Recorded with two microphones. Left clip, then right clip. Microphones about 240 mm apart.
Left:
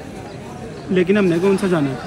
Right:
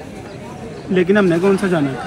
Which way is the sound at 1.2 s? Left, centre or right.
Centre.